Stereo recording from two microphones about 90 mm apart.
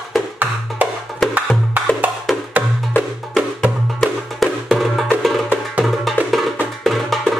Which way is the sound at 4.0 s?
Centre (ahead or behind).